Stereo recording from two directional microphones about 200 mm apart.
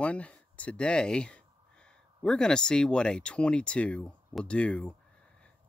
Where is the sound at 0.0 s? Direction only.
5° left (ahead or behind).